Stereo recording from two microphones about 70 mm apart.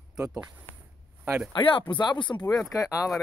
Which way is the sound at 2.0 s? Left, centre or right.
Left.